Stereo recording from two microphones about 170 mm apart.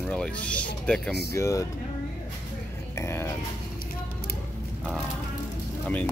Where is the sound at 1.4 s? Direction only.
20° left (ahead or behind).